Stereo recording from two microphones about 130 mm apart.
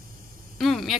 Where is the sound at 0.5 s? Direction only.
Centre (ahead or behind).